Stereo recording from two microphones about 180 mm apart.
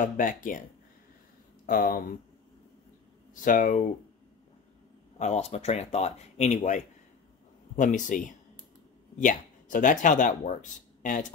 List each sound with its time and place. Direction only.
0.0 s speech: 50° left (ahead or behind)
1.7 s speech: 55° left (ahead or behind)
3.3 s speech: 45° left (ahead or behind)
5.2 s speech: 40° left (ahead or behind)